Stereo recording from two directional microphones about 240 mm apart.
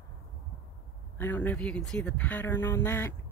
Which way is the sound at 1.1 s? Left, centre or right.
Centre.